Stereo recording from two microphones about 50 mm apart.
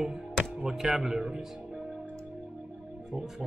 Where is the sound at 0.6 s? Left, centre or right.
Centre.